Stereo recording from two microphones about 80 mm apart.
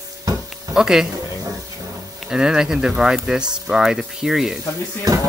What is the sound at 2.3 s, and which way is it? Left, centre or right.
Speech, centre.